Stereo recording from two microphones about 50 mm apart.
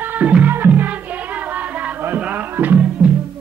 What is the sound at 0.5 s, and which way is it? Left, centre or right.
Music, right.